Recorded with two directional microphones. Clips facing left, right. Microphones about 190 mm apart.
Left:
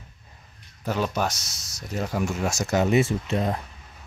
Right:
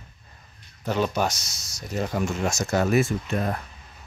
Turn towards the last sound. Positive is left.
turn(degrees=25)  # may be behind; listen again after turning